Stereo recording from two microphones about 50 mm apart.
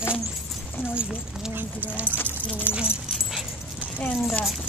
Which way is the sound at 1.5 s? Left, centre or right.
Right.